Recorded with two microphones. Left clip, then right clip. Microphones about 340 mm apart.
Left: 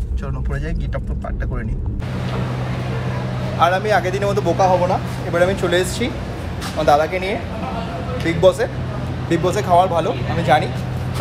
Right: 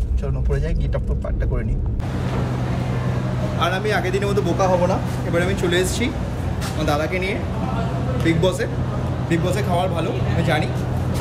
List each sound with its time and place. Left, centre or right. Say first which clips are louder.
3.5 s speech: left 6 dB; centre